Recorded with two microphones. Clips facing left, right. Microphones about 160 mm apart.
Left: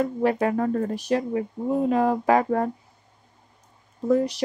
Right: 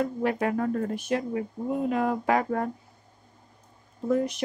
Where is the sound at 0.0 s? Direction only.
35° left (ahead or behind).